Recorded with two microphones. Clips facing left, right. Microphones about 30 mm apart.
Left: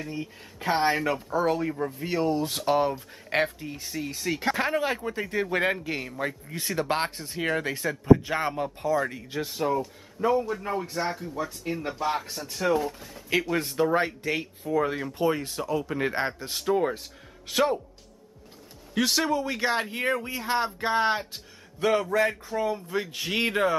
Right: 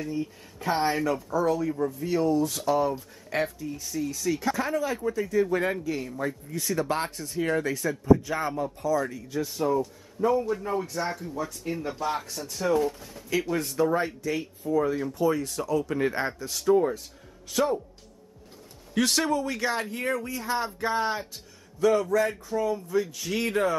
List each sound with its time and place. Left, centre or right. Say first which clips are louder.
0.1 s speech: right 3 dB; left
11.1 s speech: left 1 dB; centre
12.7 s speech: right 2 dB; centre
13.6 s speech: even; left
15.1 s speech: left 2 dB; left
16.3 s speech: right 3 dB; left
18.9 s speech: even; centre; by 23.8 s left